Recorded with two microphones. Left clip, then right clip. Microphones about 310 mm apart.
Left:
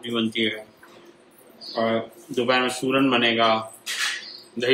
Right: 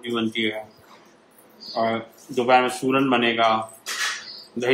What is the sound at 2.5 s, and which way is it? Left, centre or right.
Speech, centre.